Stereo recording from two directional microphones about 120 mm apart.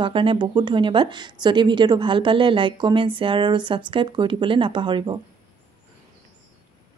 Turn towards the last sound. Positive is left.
turn(degrees=-40)  # may be behind; listen again after turning